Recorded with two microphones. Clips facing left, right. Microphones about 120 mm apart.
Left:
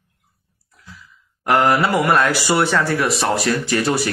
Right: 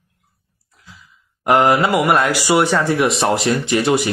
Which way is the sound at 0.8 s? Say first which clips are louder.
Left 2 dB; 20° right (ahead or behind).